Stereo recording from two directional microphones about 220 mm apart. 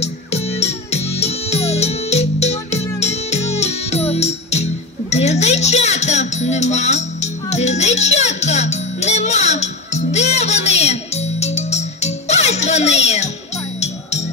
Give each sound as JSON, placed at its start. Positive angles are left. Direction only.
{"t": 0.0, "sound": "music", "side_deg": 30}